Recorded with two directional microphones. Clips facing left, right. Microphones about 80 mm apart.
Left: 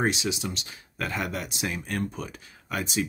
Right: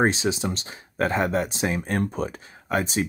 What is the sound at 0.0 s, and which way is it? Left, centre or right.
Speech, right.